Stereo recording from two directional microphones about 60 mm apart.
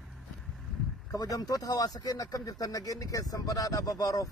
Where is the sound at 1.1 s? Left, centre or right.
Left.